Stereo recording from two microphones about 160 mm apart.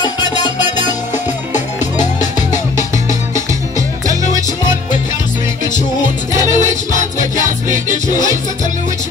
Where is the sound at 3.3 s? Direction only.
20° right (ahead or behind).